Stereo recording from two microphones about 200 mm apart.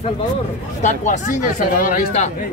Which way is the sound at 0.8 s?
35° left (ahead or behind).